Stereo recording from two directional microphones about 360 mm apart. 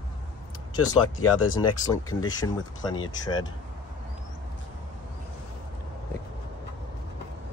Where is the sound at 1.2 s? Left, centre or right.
Left.